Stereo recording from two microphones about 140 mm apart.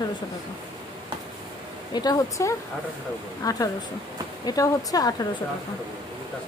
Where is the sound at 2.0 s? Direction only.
25° left (ahead or behind).